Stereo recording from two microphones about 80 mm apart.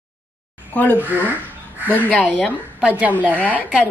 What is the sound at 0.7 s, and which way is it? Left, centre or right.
Speech, left.